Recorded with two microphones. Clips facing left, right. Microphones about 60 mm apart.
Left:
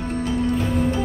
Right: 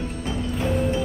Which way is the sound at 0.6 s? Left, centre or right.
Centre.